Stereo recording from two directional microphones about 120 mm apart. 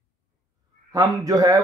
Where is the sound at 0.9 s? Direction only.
30° right (ahead or behind).